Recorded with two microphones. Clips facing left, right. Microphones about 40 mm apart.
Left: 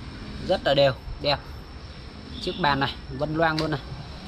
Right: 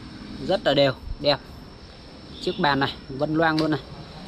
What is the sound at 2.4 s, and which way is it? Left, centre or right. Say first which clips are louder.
Speech: right 2 dB; right.